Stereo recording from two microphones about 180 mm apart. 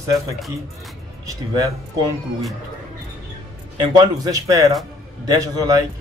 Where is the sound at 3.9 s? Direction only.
20° right (ahead or behind).